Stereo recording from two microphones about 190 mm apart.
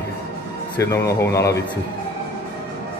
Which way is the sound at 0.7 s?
15° left (ahead or behind).